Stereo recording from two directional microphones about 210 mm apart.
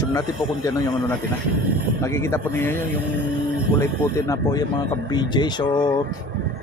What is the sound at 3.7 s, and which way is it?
Speech, 10° left (ahead or behind).